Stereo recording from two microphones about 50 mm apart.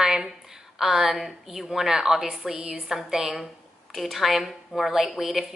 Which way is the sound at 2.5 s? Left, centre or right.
Centre.